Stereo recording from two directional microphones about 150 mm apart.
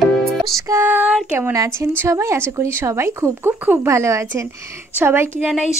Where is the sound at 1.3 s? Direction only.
20° right (ahead or behind).